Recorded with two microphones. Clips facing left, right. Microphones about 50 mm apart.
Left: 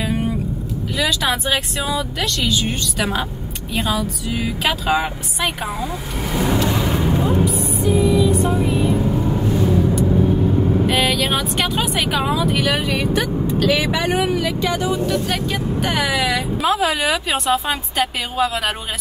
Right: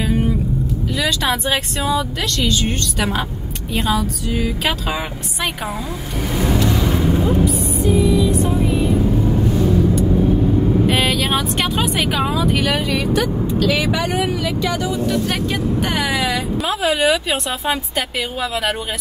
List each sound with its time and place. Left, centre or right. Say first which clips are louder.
0.9 s speech: even; centre
4.6 s speech: left 3 dB; centre
10.9 s speech: right 1 dB; centre
14.0 s speech: left 1 dB; left
15.0 s speech: right 1 dB; centre